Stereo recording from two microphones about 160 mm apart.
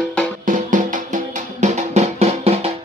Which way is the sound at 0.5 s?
55° right (ahead or behind).